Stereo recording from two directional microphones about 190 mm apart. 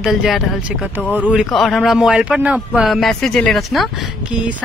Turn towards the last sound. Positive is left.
turn(degrees=-5)  # may be behind; listen again after turning